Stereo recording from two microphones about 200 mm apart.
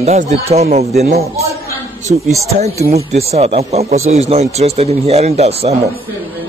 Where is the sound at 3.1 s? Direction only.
30° right (ahead or behind).